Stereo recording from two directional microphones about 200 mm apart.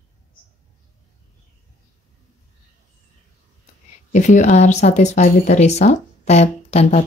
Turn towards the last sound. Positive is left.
turn(degrees=30)  # may be behind; listen again after turning